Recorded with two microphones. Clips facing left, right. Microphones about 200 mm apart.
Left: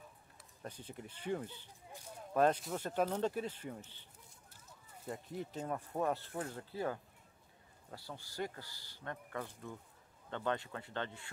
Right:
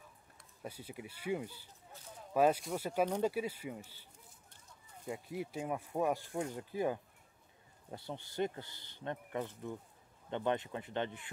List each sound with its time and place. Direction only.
0.6 s speech: 10° right (ahead or behind)
1.9 s a sound: 10° left (ahead or behind)
2.3 s speech: 5° right (ahead or behind)